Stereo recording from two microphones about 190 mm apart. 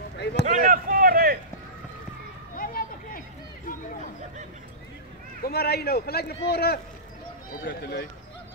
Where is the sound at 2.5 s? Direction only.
50° left (ahead or behind).